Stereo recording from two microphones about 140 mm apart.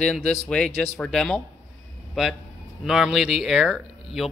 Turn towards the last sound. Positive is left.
turn(degrees=0)  # may be behind; listen again after turning